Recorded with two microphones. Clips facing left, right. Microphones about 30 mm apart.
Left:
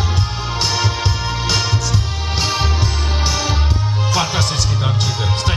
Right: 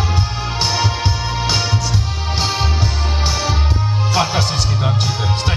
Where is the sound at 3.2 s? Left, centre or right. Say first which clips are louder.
Even; centre.